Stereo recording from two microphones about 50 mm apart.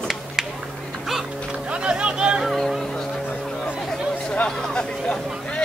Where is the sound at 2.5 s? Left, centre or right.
Centre.